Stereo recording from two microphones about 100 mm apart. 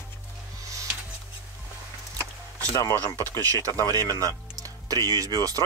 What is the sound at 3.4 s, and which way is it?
Speech, 35° right (ahead or behind).